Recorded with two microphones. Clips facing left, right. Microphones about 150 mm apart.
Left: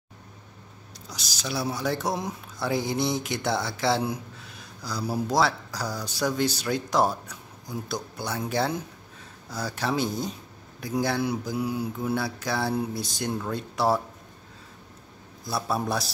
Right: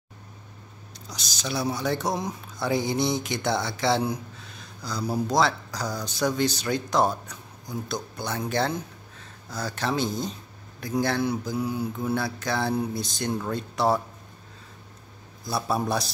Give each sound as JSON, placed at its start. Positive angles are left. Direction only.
{"t": 1.0, "sound": "speech", "side_deg": 5}
{"t": 9.5, "sound": "mantra", "side_deg": 10}
{"t": 13.4, "sound": "speech", "side_deg": 5}
{"t": 15.4, "sound": "speech", "side_deg": 0}